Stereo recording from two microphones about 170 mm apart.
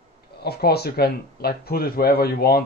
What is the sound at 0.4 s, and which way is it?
Speech, 70° left (ahead or behind).